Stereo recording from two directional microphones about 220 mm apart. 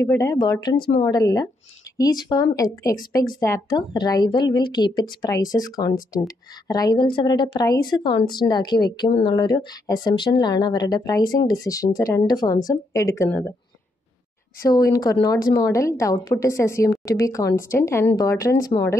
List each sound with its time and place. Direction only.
0.0 s a woman's voice: 15° left (ahead or behind)
14.6 s speech: 15° left (ahead or behind)